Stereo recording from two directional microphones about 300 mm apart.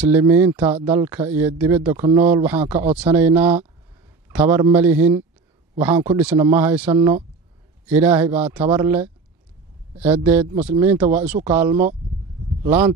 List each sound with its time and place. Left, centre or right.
0.0 s speech: centre
1.9 s a man's voice: centre
6.9 s speech: centre
7.9 s a man's voice: centre